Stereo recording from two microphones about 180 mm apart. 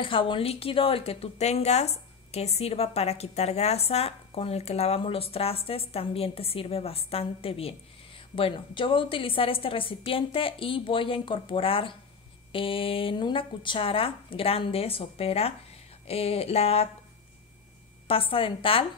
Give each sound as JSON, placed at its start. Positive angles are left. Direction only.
{"t": 0.0, "sound": "a woman's voice", "side_deg": 30}
{"t": 18.0, "sound": "a woman's voice", "side_deg": 30}